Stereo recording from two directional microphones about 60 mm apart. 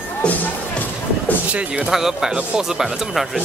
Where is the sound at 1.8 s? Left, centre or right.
Centre.